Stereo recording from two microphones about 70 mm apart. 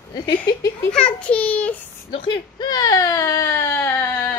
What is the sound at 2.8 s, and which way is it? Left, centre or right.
Baby cry, left.